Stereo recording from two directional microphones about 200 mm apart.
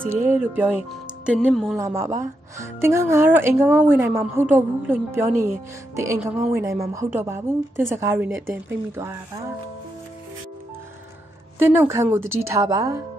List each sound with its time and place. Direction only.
0.0 s speech: 10° right (ahead or behind)
1.8 s speech: 15° right (ahead or behind)
11.5 s speech: 10° right (ahead or behind)